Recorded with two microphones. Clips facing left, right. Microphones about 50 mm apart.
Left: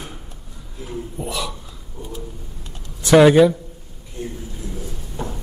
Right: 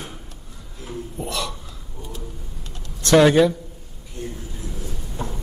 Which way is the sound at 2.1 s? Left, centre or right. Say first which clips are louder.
Left 3 dB; centre.